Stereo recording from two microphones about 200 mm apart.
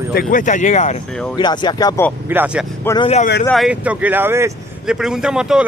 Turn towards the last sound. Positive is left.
turn(degrees=-5)  # may be behind; listen again after turning